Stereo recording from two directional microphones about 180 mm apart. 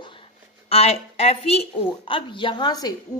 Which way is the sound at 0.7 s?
35° left (ahead or behind).